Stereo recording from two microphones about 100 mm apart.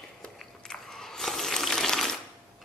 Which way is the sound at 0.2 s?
5° left (ahead or behind).